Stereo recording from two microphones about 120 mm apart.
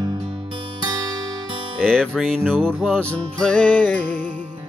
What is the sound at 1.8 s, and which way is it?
Music, 5° left (ahead or behind).